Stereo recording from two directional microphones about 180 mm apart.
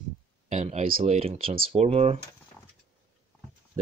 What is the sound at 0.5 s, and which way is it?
Speech, 40° right (ahead or behind).